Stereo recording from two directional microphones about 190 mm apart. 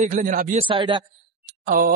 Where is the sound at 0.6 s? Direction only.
25° right (ahead or behind).